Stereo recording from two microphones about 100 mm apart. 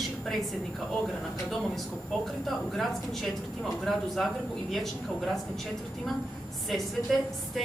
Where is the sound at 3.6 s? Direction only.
Centre (ahead or behind).